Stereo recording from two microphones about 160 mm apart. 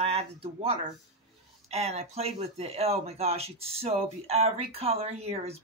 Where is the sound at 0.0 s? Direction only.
40° right (ahead or behind).